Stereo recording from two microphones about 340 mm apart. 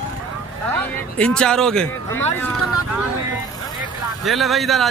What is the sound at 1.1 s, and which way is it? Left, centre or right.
Speech, centre.